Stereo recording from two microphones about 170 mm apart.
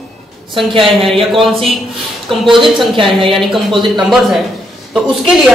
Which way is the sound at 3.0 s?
30° right (ahead or behind).